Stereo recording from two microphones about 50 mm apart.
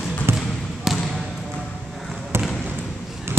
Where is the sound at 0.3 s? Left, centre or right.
Right.